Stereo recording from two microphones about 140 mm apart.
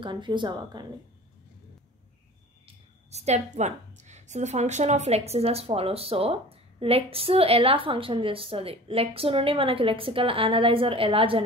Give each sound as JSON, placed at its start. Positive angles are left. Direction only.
{"t": 0.0, "sound": "a woman's voice", "side_deg": -35}
{"t": 3.1, "sound": "a woman's voice", "side_deg": -50}